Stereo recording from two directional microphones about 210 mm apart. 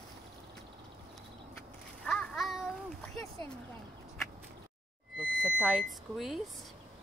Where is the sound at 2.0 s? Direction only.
5° left (ahead or behind).